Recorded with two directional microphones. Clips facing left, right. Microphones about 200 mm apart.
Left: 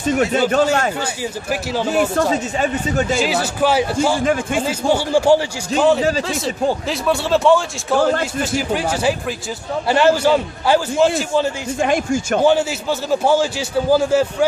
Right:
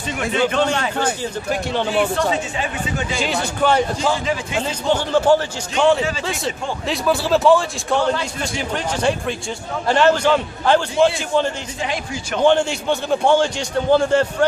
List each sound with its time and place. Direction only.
0.0 s speech: 45° left (ahead or behind)
1.5 s a man's voice: 5° left (ahead or behind)
2.3 s speech: 45° left (ahead or behind)
3.2 s a man's voice: 5° left (ahead or behind)
4.2 s speech: 50° left (ahead or behind)
4.6 s a man's voice: 10° left (ahead or behind)
8.0 s speech: 50° left (ahead or behind)
8.4 s a man's voice: 5° left (ahead or behind)
11.8 s speech: 50° left (ahead or behind)
12.4 s a man's voice: 5° left (ahead or behind)